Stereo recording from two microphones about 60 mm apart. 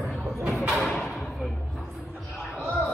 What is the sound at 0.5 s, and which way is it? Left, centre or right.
Thump, centre.